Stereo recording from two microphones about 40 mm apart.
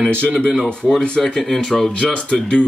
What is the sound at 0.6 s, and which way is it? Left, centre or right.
Speech, left.